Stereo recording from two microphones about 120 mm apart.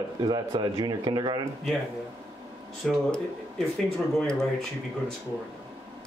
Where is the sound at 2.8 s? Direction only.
Centre (ahead or behind).